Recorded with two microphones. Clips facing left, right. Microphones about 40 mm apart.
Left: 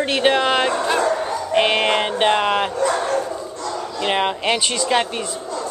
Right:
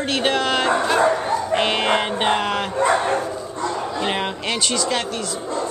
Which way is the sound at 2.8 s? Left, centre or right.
Right.